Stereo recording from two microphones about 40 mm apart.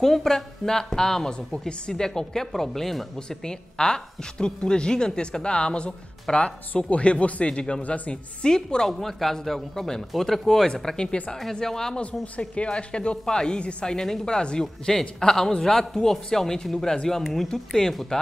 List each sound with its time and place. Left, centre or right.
0.0 s a man's voice: centre
3.2 s speech: centre
6.9 s speech: left
7.8 s speech: left
8.5 s a man's voice: centre
12.0 s speech: left
13.9 s a man's voice: centre
18.1 s a man's voice: centre